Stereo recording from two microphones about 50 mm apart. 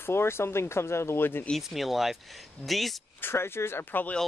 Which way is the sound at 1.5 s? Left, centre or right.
Centre.